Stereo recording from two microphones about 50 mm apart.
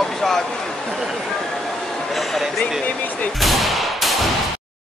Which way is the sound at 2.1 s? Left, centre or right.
Centre.